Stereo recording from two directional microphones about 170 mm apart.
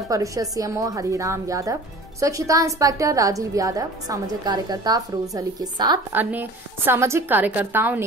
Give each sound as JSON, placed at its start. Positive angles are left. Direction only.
{"t": 0.1, "sound": "a woman's voice", "side_deg": -20}